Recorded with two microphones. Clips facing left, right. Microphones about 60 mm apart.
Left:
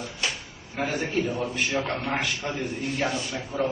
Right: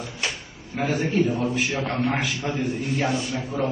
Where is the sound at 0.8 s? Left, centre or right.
Centre.